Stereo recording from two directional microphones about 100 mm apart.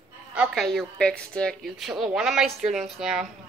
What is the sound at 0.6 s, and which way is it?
A woman's voice, centre (ahead or behind).